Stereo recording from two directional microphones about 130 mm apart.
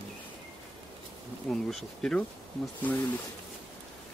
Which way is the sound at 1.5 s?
5° left (ahead or behind).